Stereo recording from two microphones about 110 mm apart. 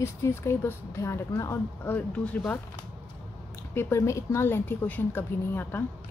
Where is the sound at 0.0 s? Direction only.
25° left (ahead or behind).